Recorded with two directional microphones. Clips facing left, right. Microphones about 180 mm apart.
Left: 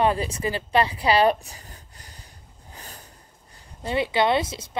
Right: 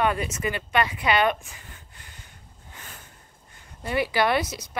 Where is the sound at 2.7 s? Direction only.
35° left (ahead or behind).